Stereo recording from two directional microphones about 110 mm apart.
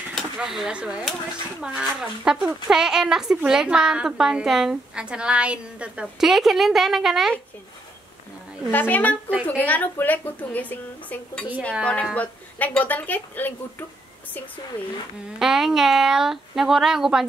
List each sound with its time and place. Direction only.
0.1 s speech: centre (ahead or behind)
8.7 s speech: 15° left (ahead or behind)
15.3 s speech: 5° right (ahead or behind)